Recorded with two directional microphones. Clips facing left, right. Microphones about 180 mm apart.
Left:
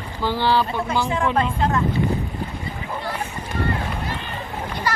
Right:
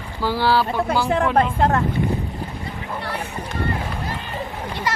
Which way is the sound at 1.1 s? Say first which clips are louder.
Right 3 dB; 55° right (ahead or behind).